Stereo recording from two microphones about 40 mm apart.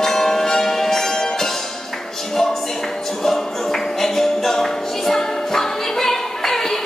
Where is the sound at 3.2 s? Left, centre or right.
Centre.